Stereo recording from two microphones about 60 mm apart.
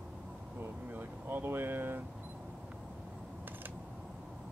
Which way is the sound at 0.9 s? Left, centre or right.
Right.